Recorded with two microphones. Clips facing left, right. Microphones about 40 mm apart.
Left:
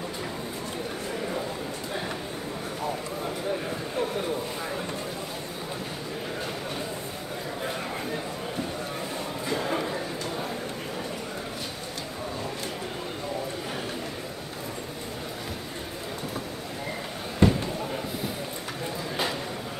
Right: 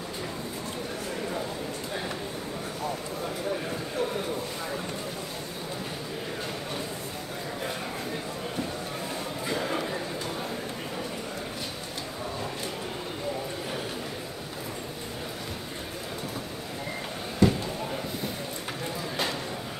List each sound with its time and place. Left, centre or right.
9.5 s music: centre
17.4 s basketball bounce: left